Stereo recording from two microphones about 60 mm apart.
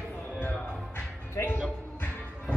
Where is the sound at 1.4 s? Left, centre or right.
Left.